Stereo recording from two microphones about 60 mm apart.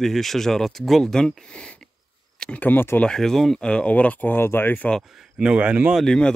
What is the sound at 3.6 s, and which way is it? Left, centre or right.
Speech, centre.